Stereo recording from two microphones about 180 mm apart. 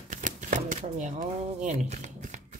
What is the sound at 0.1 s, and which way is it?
Shuffling cards, 45° right (ahead or behind).